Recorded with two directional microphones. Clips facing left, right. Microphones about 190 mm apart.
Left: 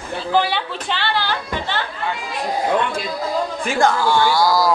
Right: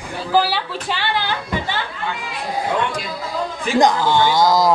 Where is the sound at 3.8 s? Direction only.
20° right (ahead or behind).